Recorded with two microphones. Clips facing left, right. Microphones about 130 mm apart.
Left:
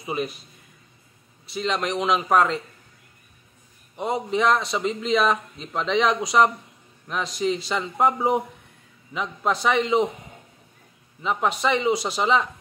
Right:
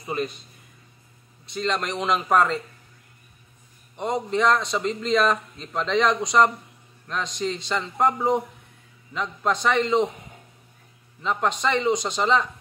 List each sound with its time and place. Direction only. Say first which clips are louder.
0.0 s speech: even; 10° left (ahead or behind)
1.4 s a man's voice: left 1 dB; 5° left (ahead or behind)
3.9 s a man's voice: even; 5° left (ahead or behind)
11.2 s a man's voice: left 1 dB; 5° left (ahead or behind)